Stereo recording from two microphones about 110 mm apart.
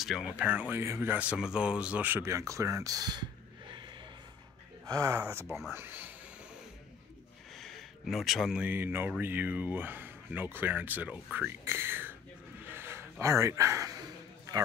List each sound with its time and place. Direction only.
0.0 s speech: 5° right (ahead or behind); by 3.3 s 40° right (ahead or behind)
4.8 s speech: 30° right (ahead or behind)
7.5 s a sound: centre (ahead or behind)
8.6 s speech: 20° right (ahead or behind)